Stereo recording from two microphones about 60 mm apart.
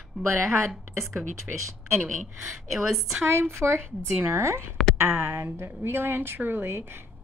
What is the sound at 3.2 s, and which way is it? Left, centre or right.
Speech, right.